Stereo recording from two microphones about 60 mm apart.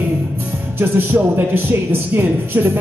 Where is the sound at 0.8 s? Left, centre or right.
Right.